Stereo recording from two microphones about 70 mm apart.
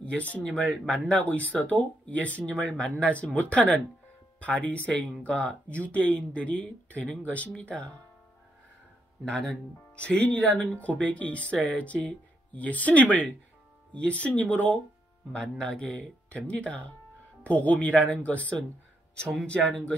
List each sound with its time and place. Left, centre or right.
0.3 s speech: centre
9.3 s speech: centre
9.9 s speech: centre